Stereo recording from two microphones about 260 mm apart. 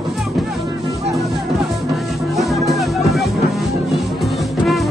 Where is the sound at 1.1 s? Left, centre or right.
Centre.